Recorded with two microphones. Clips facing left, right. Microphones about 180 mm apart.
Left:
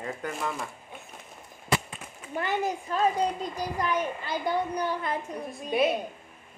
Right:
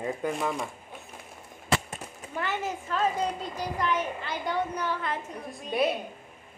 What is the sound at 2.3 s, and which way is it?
A child's voice, 15° left (ahead or behind).